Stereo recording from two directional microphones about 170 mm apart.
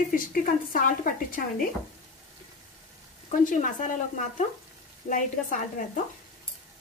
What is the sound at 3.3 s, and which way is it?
Speech, 50° left (ahead or behind).